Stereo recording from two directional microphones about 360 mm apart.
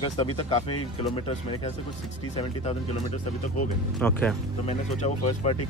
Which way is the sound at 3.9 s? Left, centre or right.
Centre.